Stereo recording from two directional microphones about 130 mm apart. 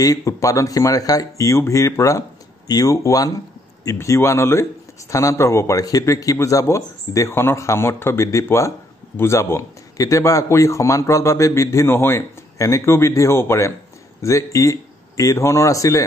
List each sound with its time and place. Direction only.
0.0 s a man's voice: 25° left (ahead or behind)